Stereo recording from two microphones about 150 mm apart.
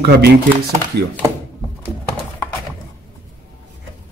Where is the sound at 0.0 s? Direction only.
90° right.